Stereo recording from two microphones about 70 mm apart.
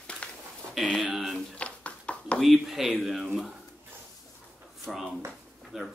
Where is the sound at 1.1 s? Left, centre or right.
Centre.